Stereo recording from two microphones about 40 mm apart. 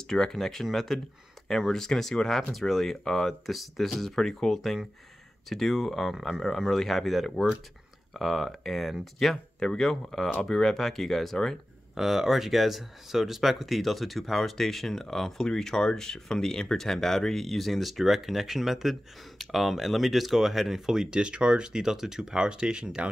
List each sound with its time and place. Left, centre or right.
0.1 s speech: centre
3.4 s speech: centre
9.6 s speech: centre
12.0 s speech: centre
21.2 s speech: right
21.8 s speech: centre